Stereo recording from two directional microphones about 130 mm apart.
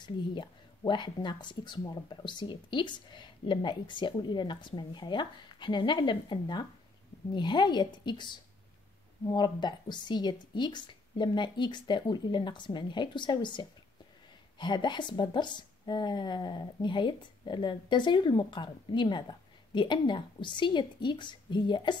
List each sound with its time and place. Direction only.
0.0 s a woman's voice: 35° left (ahead or behind)